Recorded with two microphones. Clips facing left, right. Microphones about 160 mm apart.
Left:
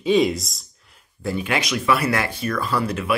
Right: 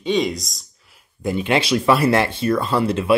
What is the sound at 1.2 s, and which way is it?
Speech, 20° right (ahead or behind).